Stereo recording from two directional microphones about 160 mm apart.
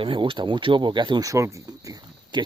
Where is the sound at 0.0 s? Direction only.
30° right (ahead or behind).